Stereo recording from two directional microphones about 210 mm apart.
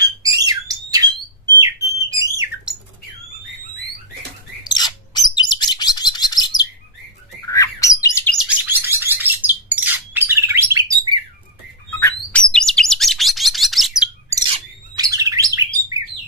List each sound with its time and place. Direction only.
0.0 s squawk: 20° right (ahead or behind)
4.6 s bird: 20° left (ahead or behind)
8.4 s bird: 10° right (ahead or behind)
12.0 s chirp: 5° left (ahead or behind)
14.3 s bird: 20° right (ahead or behind)